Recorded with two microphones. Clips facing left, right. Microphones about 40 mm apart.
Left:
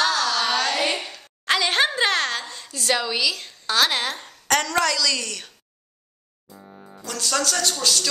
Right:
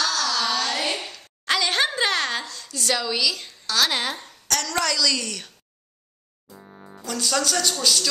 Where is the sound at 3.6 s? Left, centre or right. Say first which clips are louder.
Left 2 dB; centre.